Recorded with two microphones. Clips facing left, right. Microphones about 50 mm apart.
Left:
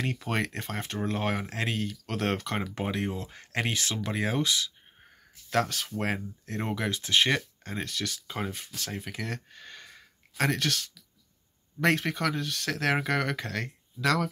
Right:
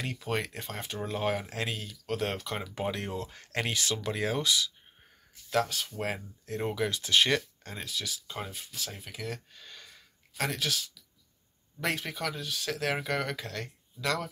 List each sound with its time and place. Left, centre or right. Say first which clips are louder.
0.0 s speech: left 5 dB; left
0.3 s speech: even; left
2.0 s speech: even; left
2.8 s speech: left 2 dB; left
5.9 s speech: left 3 dB; left
7.8 s speech: left 2 dB; left
9.5 s a sound: left 3 dB; left
10.6 s speech: left 2 dB; left